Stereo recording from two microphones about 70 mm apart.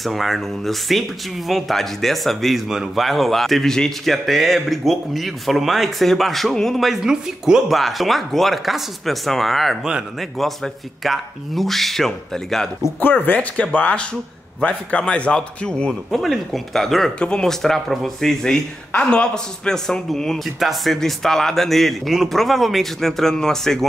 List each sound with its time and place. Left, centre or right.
0.0 s speech: centre
13.2 s a man's voice: left
15.9 s speech: centre
18.9 s a man's voice: centre